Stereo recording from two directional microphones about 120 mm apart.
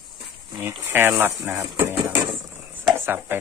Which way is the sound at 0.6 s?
20° right (ahead or behind).